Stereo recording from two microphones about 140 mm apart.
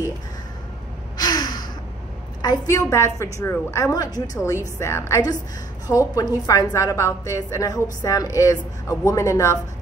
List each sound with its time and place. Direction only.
1.1 s gasp: 30° left (ahead or behind)
2.4 s a woman's voice: 25° left (ahead or behind)